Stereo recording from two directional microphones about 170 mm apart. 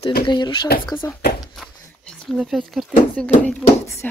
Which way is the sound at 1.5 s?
5° left (ahead or behind).